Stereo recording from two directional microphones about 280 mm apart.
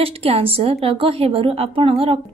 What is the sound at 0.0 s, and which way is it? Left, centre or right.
A woman's voice, right.